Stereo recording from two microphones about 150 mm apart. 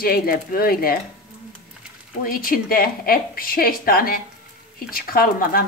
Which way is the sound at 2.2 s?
75° left (ahead or behind).